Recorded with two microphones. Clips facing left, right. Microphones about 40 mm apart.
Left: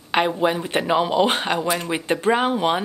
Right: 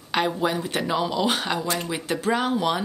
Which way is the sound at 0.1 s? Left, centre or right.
Left.